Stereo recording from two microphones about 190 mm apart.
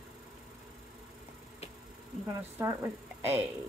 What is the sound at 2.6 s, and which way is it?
Speech, 15° right (ahead or behind).